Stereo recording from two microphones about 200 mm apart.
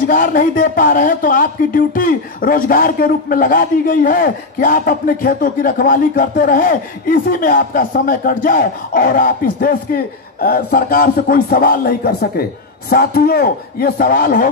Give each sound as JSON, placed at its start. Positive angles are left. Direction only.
{"t": 0.0, "sound": "speech", "side_deg": 45}